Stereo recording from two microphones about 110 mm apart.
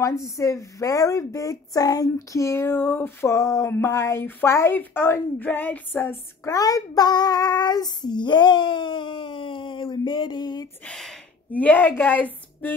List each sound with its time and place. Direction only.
0.4 s a woman's voice: 30° left (ahead or behind)
10.9 s speech: 5° left (ahead or behind)
11.5 s a woman's voice: 15° left (ahead or behind)